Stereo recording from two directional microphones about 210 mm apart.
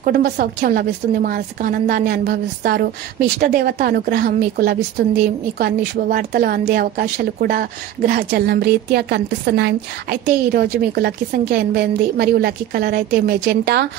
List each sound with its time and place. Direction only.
0.0 s speech: 45° right (ahead or behind)